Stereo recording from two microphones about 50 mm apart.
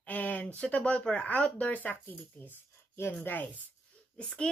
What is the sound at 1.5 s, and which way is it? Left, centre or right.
Speech, left.